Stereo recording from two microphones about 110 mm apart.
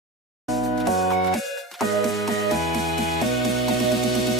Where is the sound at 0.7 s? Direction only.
Centre (ahead or behind).